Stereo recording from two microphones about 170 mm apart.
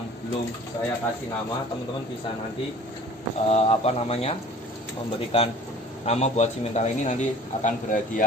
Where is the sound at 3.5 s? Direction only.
40° left (ahead or behind).